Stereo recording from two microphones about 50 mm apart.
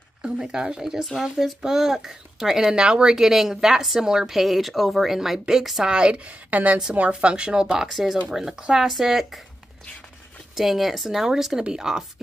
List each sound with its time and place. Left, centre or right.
0.4 s a child's voice: centre
6.5 s a woman's voice: right
6.9 s a child's voice: right
8.5 s a child's voice: centre
8.8 s speech: centre
10.5 s a child's voice: centre